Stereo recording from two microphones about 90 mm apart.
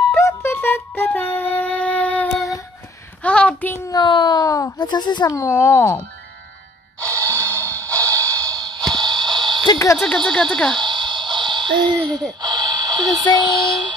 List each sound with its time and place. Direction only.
0.1 s music: 30° left (ahead or behind); by 2.2 s 15° left (ahead or behind)
3.2 s a sound: 15° left (ahead or behind)
3.9 s speech: 55° left (ahead or behind); by 4.7 s 40° left (ahead or behind)
4.7 s speech: 55° left (ahead or behind)
5.4 s speech: 30° left (ahead or behind)
7.0 s music: 30° right (ahead or behind); by 9.7 s 55° right (ahead or behind)
9.9 s speech: 5° left (ahead or behind)
10.8 s music: 60° right (ahead or behind)
12.4 s speech: 50° right (ahead or behind)